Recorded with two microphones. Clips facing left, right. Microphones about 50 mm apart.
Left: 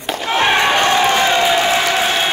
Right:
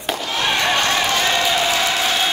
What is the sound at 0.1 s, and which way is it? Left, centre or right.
Slam, left.